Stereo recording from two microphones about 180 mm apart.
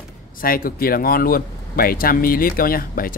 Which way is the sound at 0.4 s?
55° left (ahead or behind).